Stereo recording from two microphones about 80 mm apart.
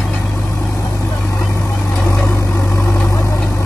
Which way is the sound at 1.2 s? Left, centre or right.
Left.